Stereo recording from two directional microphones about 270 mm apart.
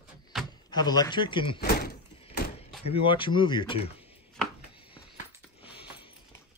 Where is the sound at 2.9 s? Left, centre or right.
Centre.